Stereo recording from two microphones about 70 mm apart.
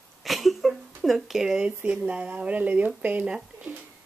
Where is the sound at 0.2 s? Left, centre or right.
Centre.